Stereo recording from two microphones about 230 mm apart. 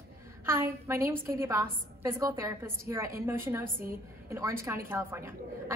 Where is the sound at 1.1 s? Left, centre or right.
Centre.